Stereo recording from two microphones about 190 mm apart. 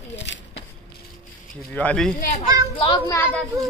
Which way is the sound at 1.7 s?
5° left (ahead or behind).